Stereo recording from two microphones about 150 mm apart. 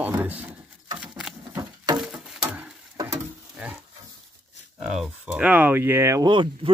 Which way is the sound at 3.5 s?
10° right (ahead or behind).